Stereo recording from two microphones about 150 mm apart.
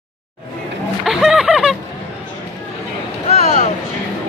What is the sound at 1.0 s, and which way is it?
Snicker, 5° right (ahead or behind).